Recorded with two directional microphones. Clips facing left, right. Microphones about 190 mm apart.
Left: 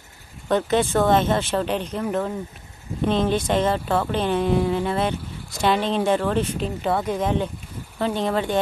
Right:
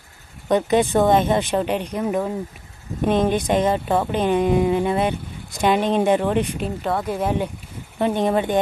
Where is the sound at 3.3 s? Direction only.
15° right (ahead or behind).